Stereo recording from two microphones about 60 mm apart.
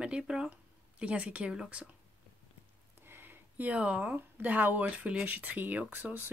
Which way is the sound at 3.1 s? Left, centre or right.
Right.